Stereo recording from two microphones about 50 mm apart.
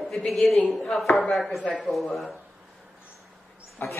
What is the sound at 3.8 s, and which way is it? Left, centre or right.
Speech, left.